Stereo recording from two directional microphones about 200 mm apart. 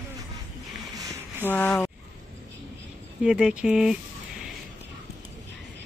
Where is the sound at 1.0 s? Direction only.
15° right (ahead or behind).